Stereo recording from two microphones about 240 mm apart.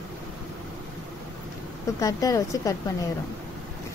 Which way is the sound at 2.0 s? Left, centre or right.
Centre.